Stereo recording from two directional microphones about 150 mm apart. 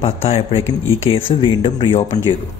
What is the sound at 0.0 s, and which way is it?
Speech, 40° left (ahead or behind).